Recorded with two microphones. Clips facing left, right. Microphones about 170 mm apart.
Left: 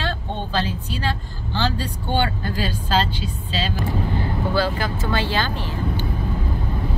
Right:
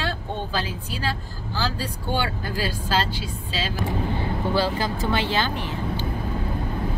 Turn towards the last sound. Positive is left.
turn(degrees=-20)  # may be behind; listen again after turning